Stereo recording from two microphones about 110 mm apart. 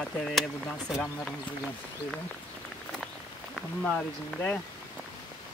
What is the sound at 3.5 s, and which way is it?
Speech, 5° left (ahead or behind).